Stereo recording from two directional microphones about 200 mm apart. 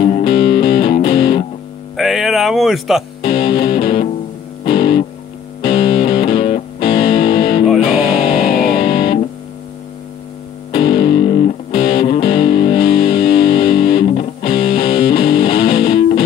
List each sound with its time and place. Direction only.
0.0 s music: 25° left (ahead or behind)
2.0 s music: centre (ahead or behind)
3.2 s music: 25° left (ahead or behind)
7.6 s music: centre (ahead or behind)
8.7 s music: 25° left (ahead or behind)
10.7 s music: 25° left (ahead or behind)